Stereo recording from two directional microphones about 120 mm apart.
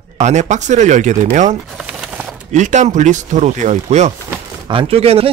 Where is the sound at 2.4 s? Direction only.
85° right; by 4.1 s 65° right (ahead or behind).